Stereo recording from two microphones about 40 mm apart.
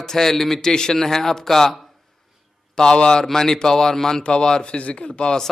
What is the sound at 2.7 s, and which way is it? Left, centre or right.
Speech, left.